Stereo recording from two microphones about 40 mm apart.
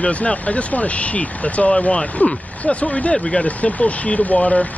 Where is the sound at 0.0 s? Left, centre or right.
Left.